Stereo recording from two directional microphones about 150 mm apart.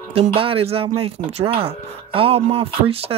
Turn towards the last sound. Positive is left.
turn(degrees=-40)  # may be behind; listen again after turning